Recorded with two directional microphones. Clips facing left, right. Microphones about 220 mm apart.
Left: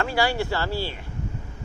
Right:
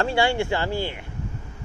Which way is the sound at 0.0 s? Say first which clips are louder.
Right 2 dB; 25° right (ahead or behind).